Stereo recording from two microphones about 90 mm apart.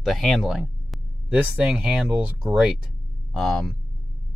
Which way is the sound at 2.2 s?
20° right (ahead or behind).